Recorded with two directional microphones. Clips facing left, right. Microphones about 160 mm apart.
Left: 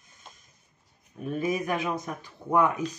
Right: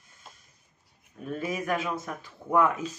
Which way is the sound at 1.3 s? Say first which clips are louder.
Left 2 dB; 20° left (ahead or behind).